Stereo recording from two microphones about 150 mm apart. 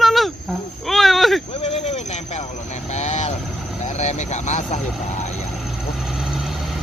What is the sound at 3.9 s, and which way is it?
Speech, 50° left (ahead or behind).